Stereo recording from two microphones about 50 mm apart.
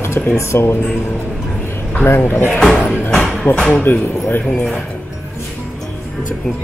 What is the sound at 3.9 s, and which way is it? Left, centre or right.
Speech, left.